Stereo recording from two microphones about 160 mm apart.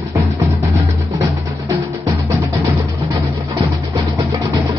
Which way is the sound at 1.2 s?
20° right (ahead or behind).